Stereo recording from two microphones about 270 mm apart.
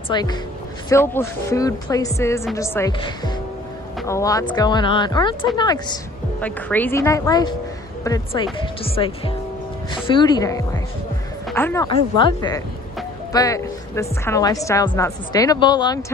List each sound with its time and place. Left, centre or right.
0.1 s a woman's voice: centre